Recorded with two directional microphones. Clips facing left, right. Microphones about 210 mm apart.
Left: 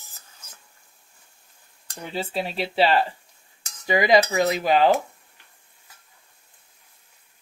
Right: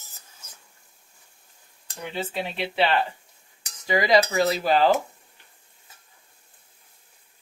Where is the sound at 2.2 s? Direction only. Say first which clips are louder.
Left 2 dB; 35° left (ahead or behind).